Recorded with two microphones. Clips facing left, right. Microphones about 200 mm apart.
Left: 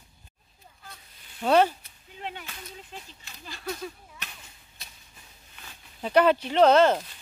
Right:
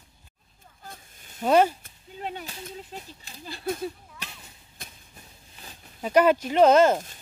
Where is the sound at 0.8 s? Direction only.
50° right (ahead or behind).